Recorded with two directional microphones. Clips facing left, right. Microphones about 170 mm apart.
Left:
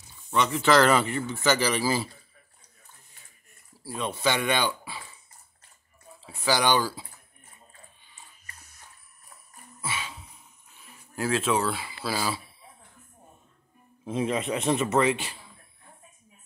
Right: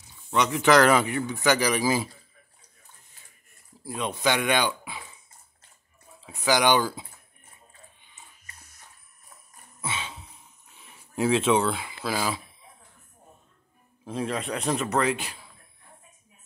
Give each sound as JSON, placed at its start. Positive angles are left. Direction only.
{"t": 0.3, "sound": "speech", "side_deg": -15}
{"t": 3.8, "sound": "speech", "side_deg": -15}
{"t": 6.2, "sound": "speech", "side_deg": -15}
{"t": 9.8, "sound": "a sound", "side_deg": -20}
{"t": 11.1, "sound": "speech", "side_deg": 0}
{"t": 11.7, "sound": "speech", "side_deg": -15}
{"t": 14.0, "sound": "speech", "side_deg": 0}